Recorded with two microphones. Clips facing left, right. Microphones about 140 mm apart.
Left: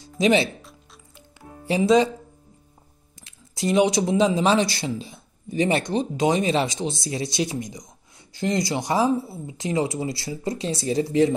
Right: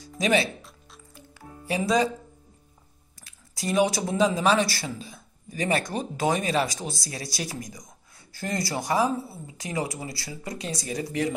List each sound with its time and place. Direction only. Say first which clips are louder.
0.2 s speech: left 4 dB; 25° left (ahead or behind)
1.7 s speech: left 6 dB; 25° left (ahead or behind)
3.2 s speech: left 8 dB; 25° left (ahead or behind)